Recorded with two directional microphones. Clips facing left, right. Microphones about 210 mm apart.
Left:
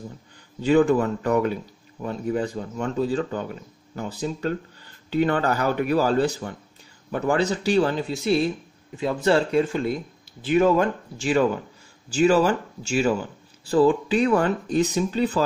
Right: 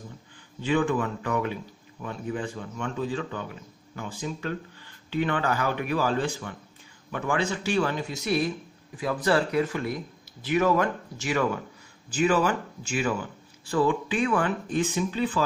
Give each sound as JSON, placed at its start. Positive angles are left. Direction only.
{"t": 0.6, "sound": "a man's voice", "side_deg": 40}